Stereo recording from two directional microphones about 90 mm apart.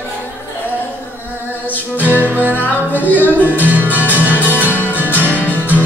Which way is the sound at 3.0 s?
20° left (ahead or behind).